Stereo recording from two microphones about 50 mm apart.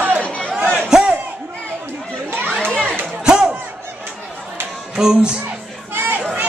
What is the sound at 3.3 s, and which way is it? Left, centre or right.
Crowd, centre.